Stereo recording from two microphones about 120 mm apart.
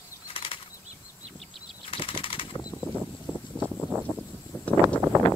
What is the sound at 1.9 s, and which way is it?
Bird flight, 50° left (ahead or behind).